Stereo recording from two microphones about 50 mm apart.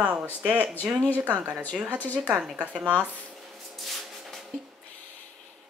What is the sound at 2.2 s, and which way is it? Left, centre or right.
Speech, right.